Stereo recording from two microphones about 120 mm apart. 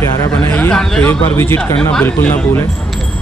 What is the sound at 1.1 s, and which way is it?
A man's voice, 20° left (ahead or behind).